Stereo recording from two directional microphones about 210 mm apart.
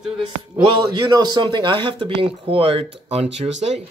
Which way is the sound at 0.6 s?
20° right (ahead or behind).